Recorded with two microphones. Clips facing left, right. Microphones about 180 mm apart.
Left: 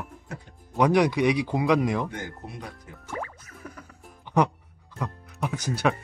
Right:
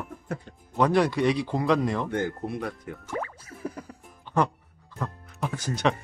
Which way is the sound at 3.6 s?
35° right (ahead or behind).